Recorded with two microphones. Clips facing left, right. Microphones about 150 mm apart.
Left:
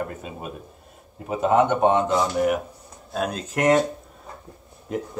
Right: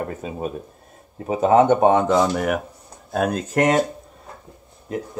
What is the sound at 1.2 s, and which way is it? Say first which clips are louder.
Speech: right 4 dB; 45° right (ahead or behind).